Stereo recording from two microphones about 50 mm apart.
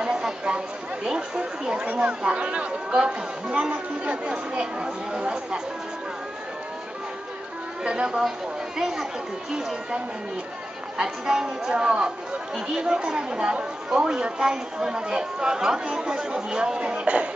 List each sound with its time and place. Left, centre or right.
0.0 s chatter: centre
1.0 s speech: centre
7.8 s speech: centre
8.7 s speech: centre
11.0 s speech: centre